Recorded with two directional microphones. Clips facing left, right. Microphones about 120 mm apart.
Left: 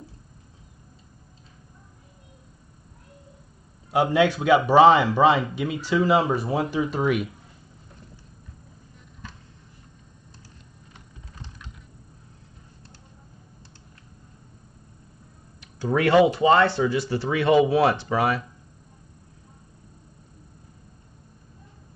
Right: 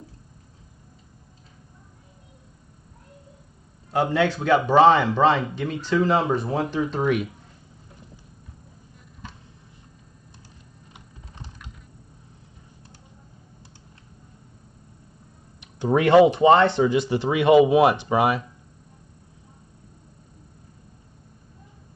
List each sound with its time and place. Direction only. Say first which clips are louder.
3.9 s a man's voice: left 2 dB; 15° left (ahead or behind)
10.9 s typing: right 1 dB; 15° right (ahead or behind)
15.6 s speech: right 2 dB; 20° right (ahead or behind)